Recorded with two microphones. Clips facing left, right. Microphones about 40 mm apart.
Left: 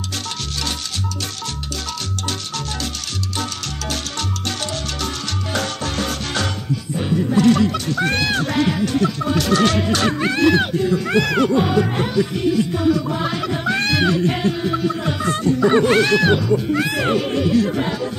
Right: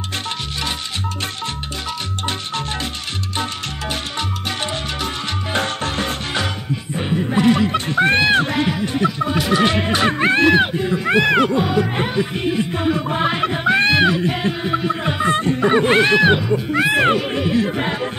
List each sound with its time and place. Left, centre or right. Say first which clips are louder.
3.9 s salsa music: right 1 dB; right
5.0 s music: right 1 dB; right
11.5 s music: left 1 dB; centre
11.9 s music: left 1 dB; right
15.8 s speech: right 1 dB; right